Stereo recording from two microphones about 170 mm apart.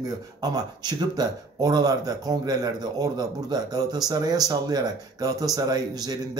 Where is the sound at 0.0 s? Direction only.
20° right (ahead or behind).